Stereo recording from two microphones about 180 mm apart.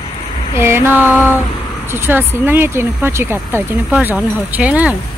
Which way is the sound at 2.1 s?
10° right (ahead or behind).